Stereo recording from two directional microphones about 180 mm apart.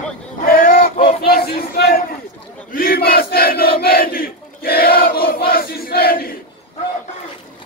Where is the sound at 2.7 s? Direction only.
55° left (ahead or behind).